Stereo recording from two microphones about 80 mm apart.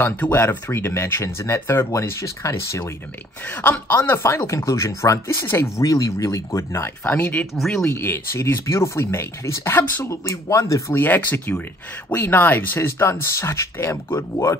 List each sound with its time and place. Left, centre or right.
0.0 s speech: left
3.4 s speech: left
7.1 s speech: left
7.5 s speech: centre
7.9 s speech: left